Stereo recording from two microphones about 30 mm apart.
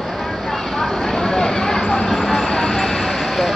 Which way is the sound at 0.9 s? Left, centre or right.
Centre.